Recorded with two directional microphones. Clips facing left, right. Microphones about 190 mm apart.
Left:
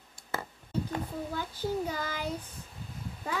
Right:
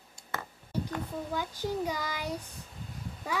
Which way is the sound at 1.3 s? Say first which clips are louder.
Even; 15° right (ahead or behind).